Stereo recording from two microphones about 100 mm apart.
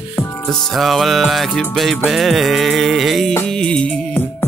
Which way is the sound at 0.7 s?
Centre (ahead or behind).